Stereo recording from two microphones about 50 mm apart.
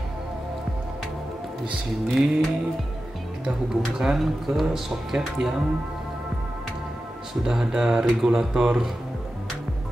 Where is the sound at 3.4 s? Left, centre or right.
Centre.